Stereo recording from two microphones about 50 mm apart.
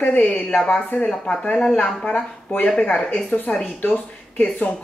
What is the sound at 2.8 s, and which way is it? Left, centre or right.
Speech, left.